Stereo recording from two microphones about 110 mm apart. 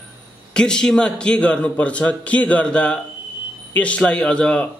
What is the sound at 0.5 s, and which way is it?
Speech, 5° left (ahead or behind).